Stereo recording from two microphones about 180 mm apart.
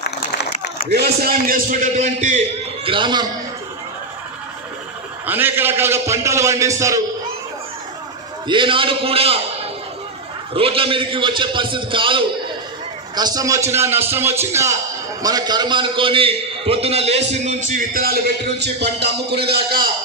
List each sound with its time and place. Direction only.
0.8 s a man's voice: 65° right (ahead or behind); by 3.3 s 25° right (ahead or behind)
5.2 s a man's voice: 10° right (ahead or behind)
8.5 s a man's voice: 30° right (ahead or behind)
10.5 s a man's voice: 30° right (ahead or behind)
17.6 s a man's voice: 50° right (ahead or behind)